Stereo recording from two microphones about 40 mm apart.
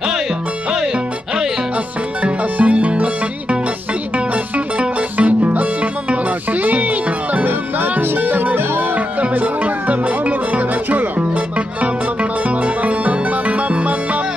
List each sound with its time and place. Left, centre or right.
2.5 s music: right
4.7 s music: right
7.4 s music: right